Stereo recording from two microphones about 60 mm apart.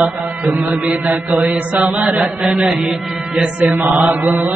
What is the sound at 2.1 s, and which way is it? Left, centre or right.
Chant, centre.